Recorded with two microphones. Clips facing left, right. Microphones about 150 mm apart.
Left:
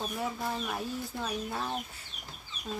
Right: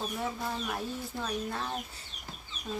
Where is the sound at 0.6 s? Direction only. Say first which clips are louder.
Even; 5° left (ahead or behind).